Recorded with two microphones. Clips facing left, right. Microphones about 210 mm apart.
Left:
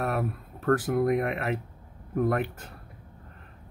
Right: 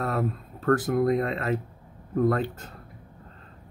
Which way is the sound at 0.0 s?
15° left (ahead or behind).